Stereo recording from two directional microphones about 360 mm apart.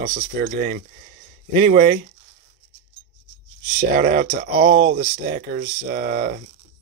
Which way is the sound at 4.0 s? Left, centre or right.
Right.